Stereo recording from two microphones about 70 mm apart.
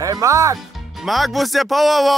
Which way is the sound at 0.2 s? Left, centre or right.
Right.